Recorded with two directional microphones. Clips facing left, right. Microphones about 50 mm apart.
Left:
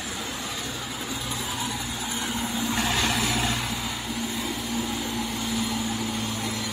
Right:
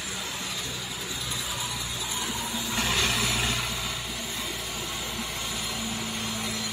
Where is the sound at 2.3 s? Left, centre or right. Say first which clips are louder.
Left 4 dB; left.